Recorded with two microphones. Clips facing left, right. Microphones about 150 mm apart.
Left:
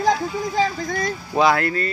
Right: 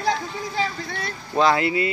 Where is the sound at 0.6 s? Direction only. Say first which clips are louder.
Left 5 dB; 40° left (ahead or behind).